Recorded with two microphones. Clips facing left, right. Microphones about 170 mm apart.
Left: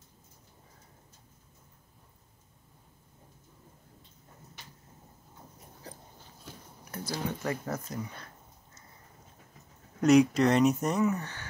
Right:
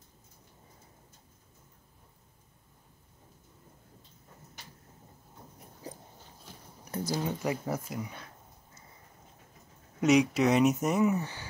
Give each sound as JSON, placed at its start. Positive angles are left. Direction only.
{"t": 6.9, "sound": "speech", "side_deg": -15}
{"t": 9.9, "sound": "speech", "side_deg": 0}